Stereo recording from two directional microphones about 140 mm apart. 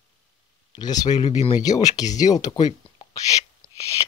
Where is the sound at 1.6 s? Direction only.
25° left (ahead or behind).